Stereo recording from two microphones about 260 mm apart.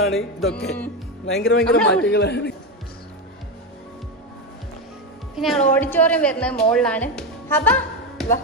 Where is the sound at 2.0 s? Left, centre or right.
Left.